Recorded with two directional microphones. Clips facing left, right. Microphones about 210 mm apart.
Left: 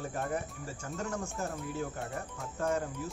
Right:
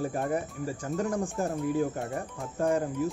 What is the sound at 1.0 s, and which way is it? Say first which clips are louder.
Speech: right 6 dB; 30° right (ahead or behind).